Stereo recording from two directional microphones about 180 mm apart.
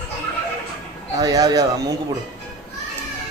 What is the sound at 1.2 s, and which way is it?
Speech, 20° right (ahead or behind).